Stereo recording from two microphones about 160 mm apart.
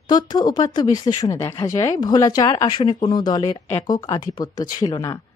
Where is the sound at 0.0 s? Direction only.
25° left (ahead or behind).